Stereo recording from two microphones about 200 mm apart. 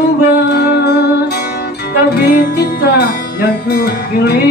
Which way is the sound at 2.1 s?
50° left (ahead or behind).